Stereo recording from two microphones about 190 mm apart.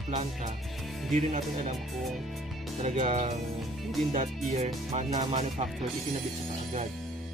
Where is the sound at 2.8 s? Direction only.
35° right (ahead or behind).